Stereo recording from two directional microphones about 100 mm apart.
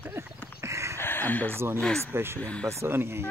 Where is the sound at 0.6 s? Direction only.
30° right (ahead or behind).